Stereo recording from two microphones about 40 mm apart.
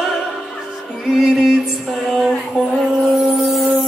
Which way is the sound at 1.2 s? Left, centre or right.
Centre.